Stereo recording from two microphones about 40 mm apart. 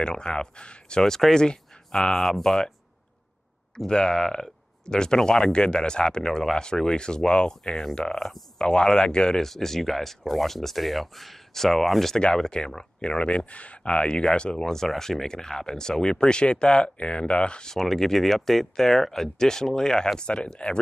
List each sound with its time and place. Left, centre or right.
0.0 s speech: left
3.7 s speech: centre
8.5 s speech: left
9.5 s speech: centre
12.4 s speech: centre
14.6 s speech: centre; by 17.6 s left
17.6 s speech: centre; by 20.8 s left